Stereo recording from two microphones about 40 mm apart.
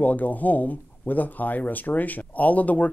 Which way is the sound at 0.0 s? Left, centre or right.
Left.